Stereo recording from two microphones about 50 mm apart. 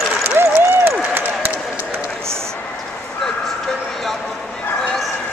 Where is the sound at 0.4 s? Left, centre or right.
Right.